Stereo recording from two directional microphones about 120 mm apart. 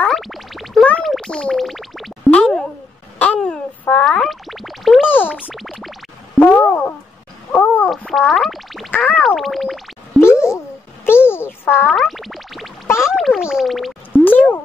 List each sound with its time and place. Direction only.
0.0 s music: centre (ahead or behind)
2.3 s plop: 10° left (ahead or behind)
3.2 s boing: 10° left (ahead or behind)
5.0 s boing: 15° left (ahead or behind)
5.3 s music: centre (ahead or behind)
6.4 s a sound: 15° left (ahead or behind)
8.1 s music: centre (ahead or behind)
11.1 s music for children: 20° left (ahead or behind)
11.9 s music: centre (ahead or behind)
12.8 s music: 20° left (ahead or behind)
13.1 s music: centre (ahead or behind)
14.1 s a sound: 15° left (ahead or behind)